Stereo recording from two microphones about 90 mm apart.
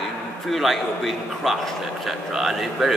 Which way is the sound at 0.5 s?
Centre (ahead or behind).